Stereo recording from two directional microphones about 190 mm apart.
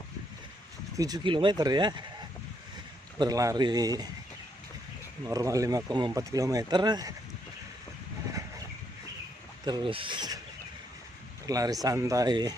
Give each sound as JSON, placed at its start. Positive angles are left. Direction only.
{"t": 0.9, "sound": "speech", "side_deg": -20}
{"t": 3.2, "sound": "speech", "side_deg": -20}
{"t": 5.3, "sound": "speech", "side_deg": -15}
{"t": 9.7, "sound": "speech", "side_deg": -25}
{"t": 11.4, "sound": "speech", "side_deg": -20}